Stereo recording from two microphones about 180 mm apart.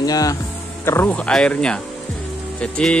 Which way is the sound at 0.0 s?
20° left (ahead or behind).